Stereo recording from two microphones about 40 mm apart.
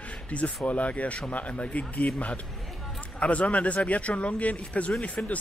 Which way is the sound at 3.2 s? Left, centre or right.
Left.